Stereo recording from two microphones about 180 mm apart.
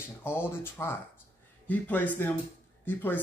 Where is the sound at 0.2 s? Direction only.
10° left (ahead or behind).